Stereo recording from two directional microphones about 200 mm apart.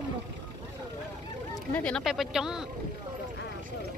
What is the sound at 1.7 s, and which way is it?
Speech, 5° left (ahead or behind).